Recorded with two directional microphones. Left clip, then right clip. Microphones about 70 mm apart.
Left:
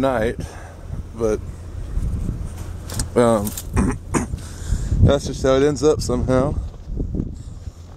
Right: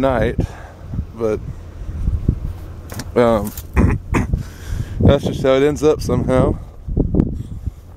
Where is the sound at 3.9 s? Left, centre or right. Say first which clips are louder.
Right 2 dB; centre.